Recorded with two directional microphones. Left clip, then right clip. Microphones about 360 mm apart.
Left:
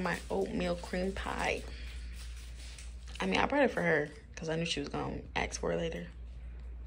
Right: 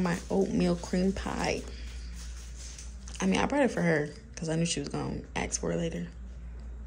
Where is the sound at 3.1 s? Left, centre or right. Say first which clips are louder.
Right 2 dB; centre.